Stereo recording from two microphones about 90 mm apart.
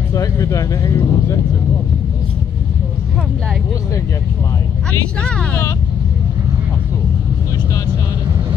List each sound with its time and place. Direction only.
0.1 s speech: 35° left (ahead or behind)
5.2 s speech: 10° left (ahead or behind)